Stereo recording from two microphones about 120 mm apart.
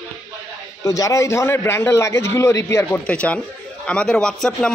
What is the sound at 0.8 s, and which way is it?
Speech, 25° left (ahead or behind).